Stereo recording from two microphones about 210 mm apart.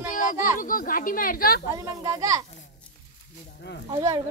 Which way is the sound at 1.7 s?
15° right (ahead or behind).